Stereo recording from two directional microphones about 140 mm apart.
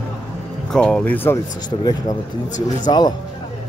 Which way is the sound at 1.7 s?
35° left (ahead or behind).